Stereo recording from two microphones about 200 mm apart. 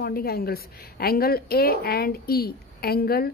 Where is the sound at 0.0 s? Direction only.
50° left (ahead or behind).